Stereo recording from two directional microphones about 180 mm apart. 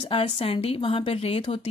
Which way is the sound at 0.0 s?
30° left (ahead or behind).